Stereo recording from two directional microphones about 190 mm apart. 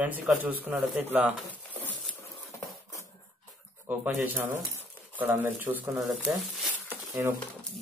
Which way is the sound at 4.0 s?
10° right (ahead or behind).